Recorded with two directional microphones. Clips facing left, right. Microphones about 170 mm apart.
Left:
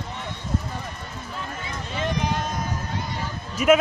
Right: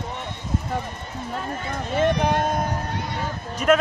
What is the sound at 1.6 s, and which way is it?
Speech, 55° right (ahead or behind).